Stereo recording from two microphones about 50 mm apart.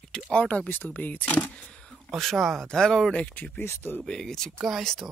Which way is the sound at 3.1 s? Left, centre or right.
Left.